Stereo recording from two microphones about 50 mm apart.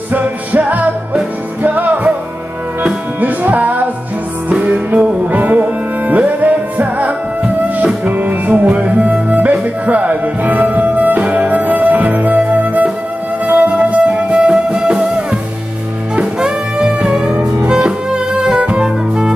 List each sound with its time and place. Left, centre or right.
0.1 s music: right
3.2 s music: right; by 19.3 s centre